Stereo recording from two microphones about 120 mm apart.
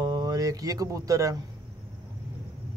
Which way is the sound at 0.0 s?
35° right (ahead or behind).